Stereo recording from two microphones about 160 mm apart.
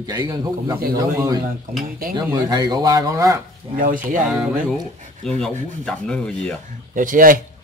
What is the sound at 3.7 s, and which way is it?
Speech, 60° right (ahead or behind).